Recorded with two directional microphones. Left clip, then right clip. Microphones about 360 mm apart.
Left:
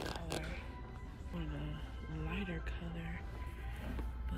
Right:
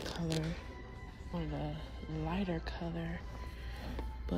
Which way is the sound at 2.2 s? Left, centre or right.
Right.